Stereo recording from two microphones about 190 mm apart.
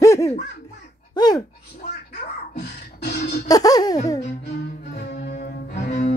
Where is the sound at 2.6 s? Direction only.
60° left (ahead or behind).